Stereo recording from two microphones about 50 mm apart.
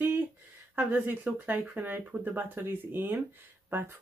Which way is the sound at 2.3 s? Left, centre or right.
Right.